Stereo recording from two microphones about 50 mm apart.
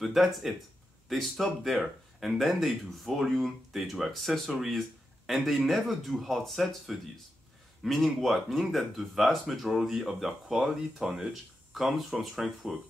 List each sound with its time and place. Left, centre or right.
0.0 s speech: centre
11.1 s speech: right
11.7 s speech: centre